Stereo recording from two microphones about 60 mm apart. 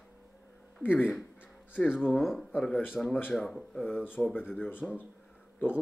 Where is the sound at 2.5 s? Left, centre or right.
Centre.